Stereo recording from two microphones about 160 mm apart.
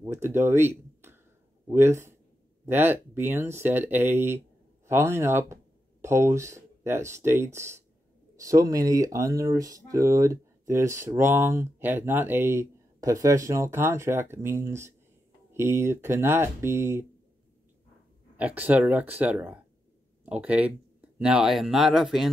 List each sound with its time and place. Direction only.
0.0 s a sound: 15° right (ahead or behind)
1.7 s speech: 15° right (ahead or behind)
18.4 s speech: 10° right (ahead or behind)